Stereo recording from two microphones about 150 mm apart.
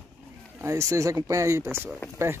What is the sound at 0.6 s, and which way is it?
Speech, 20° right (ahead or behind).